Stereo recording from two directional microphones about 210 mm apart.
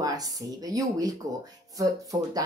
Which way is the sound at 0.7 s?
15° right (ahead or behind).